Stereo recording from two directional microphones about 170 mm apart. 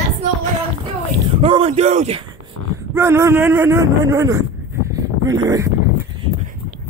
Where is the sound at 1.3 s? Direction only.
35° right (ahead or behind).